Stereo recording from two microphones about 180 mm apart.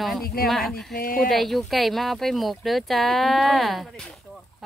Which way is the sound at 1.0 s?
50° left (ahead or behind).